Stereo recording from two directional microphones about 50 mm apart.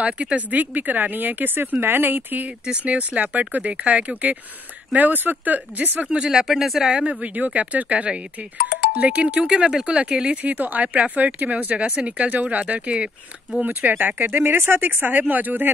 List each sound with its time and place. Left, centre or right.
0.0 s speech: right
2.8 s speech: right
6.0 s speech: centre
6.4 s speech: centre
7.2 s speech: right
10.4 s speech: right
13.6 s speech: right